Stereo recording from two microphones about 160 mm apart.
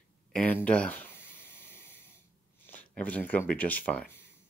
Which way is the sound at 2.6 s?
10° left (ahead or behind).